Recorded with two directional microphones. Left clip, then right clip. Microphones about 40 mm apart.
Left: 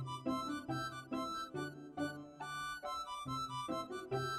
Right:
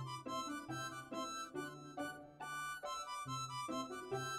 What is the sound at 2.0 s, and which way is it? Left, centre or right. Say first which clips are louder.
Music: left 3 dB; left.